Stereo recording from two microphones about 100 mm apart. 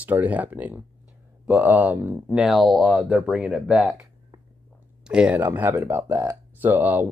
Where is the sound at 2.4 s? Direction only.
Centre (ahead or behind).